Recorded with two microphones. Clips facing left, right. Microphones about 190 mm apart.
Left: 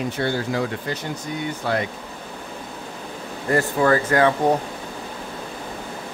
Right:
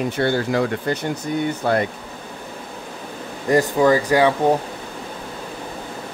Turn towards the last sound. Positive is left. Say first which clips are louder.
# right 2 dB
turn(degrees=-10)  # may be behind; listen again after turning